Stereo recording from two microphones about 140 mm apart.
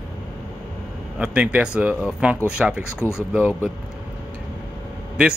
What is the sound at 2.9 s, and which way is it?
Speech, 20° left (ahead or behind).